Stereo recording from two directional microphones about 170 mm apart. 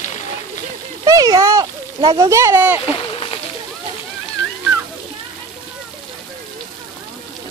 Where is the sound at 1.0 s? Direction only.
20° right (ahead or behind).